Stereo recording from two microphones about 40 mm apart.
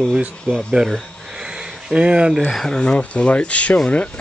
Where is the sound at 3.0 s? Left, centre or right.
Left.